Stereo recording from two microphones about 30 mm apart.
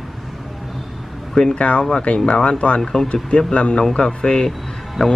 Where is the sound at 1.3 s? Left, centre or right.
Left.